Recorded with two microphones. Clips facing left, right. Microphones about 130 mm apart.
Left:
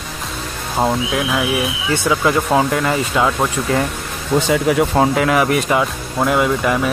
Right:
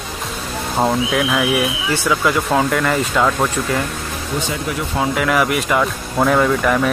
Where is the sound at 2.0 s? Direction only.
25° left (ahead or behind).